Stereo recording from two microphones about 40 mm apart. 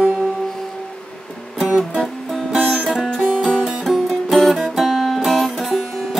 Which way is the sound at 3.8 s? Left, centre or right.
Centre.